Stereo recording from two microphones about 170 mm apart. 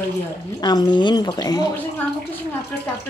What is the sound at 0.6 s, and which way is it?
A woman's voice, 25° left (ahead or behind).